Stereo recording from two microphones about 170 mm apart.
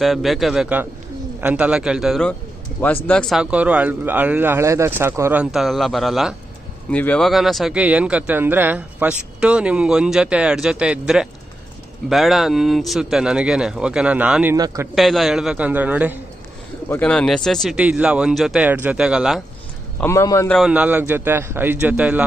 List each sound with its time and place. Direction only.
0.0 s speech: centre (ahead or behind)
14.6 s a man's voice: 20° right (ahead or behind)
15.0 s speech: centre (ahead or behind)
16.9 s speech: 5° left (ahead or behind)
20.0 s a man's voice: 15° left (ahead or behind)
20.5 s speech: 5° right (ahead or behind)